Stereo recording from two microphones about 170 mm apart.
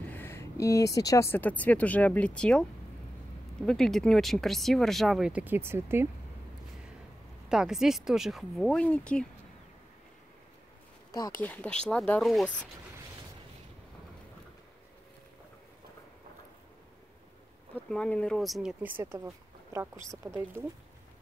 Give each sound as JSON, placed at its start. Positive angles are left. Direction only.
{"t": 0.1, "sound": "speech", "side_deg": 15}
{"t": 3.6, "sound": "speech", "side_deg": 0}
{"t": 7.4, "sound": "speech", "side_deg": -5}
{"t": 11.1, "sound": "speech", "side_deg": 20}
{"t": 11.4, "sound": "speech", "side_deg": 10}
{"t": 17.7, "sound": "speech", "side_deg": 5}